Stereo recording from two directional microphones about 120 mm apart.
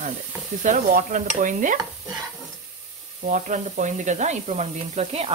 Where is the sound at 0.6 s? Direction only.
90° right.